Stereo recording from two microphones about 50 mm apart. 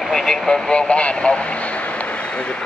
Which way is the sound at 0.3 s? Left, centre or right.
Centre.